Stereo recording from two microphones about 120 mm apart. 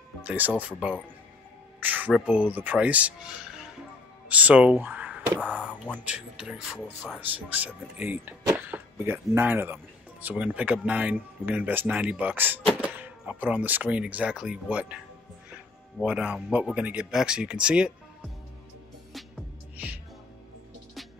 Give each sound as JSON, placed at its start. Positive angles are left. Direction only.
{"t": 0.2, "sound": "speech", "side_deg": -10}
{"t": 16.0, "sound": "speech", "side_deg": -10}